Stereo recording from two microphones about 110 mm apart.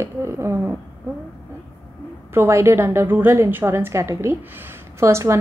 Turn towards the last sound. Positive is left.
turn(degrees=-25)  # may be behind; listen again after turning